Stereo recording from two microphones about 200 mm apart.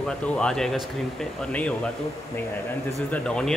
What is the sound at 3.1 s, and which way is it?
Speech, 5° left (ahead or behind).